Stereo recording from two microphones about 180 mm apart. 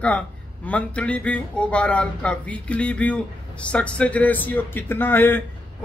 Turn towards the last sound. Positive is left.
turn(degrees=10)  # may be behind; listen again after turning